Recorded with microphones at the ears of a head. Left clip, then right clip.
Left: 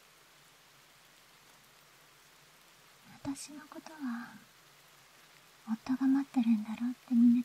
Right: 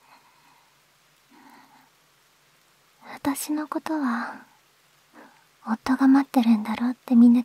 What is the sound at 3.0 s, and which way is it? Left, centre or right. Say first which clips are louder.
Speech: right 14 dB; right.